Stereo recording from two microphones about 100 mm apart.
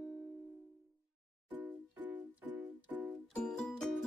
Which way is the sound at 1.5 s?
15° right (ahead or behind).